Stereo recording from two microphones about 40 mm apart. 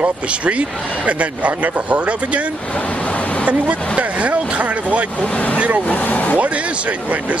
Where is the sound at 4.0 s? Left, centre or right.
Right.